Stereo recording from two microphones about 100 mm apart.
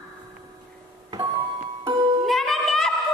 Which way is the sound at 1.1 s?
35° right (ahead or behind).